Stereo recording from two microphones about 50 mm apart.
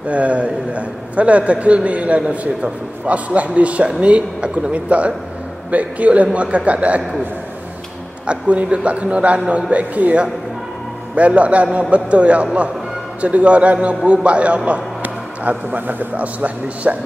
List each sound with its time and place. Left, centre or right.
0.1 s a man's voice: right
8.3 s a man's voice: right